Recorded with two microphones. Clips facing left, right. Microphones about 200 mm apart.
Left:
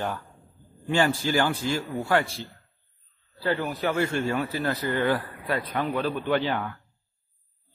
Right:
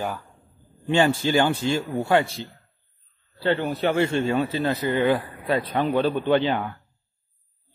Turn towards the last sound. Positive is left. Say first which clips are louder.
# right 4 dB
turn(degrees=-20)  # may be behind; listen again after turning